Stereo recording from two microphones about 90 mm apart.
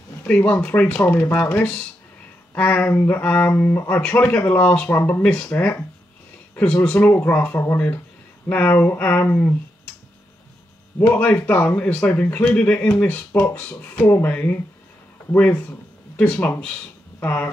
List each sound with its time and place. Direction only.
0.2 s speech: 20° left (ahead or behind)
11.0 s speech: 15° left (ahead or behind)